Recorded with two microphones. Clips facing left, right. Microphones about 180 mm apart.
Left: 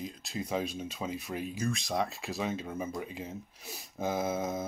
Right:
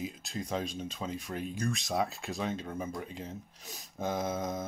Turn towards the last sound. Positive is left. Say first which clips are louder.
# left 2 dB
turn(degrees=5)  # may be behind; listen again after turning